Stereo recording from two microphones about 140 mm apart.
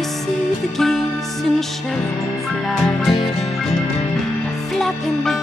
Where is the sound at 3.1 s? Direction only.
45° left (ahead or behind).